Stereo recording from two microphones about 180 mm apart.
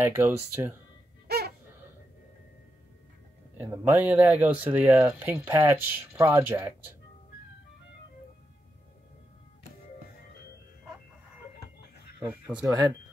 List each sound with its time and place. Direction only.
0.0 s speech: 10° right (ahead or behind)
1.2 s a sound: 60° right (ahead or behind)
3.5 s speech: 15° right (ahead or behind)
12.2 s speech: 10° right (ahead or behind)
12.5 s speech: 20° right (ahead or behind)